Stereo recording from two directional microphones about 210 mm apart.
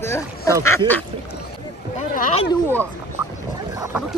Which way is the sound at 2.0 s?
35° left (ahead or behind).